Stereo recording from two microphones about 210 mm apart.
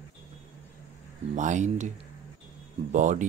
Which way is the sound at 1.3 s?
35° right (ahead or behind).